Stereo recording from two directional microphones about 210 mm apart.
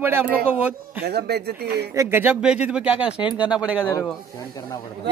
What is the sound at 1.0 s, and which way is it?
Speech, 50° right (ahead or behind).